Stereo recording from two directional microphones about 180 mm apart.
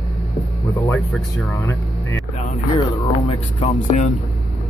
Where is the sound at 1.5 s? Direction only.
15° left (ahead or behind).